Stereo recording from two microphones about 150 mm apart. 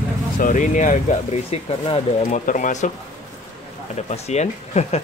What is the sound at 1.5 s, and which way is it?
Speech, 40° left (ahead or behind).